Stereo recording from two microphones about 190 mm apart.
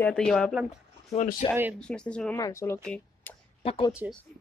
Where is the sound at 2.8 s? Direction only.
5° left (ahead or behind).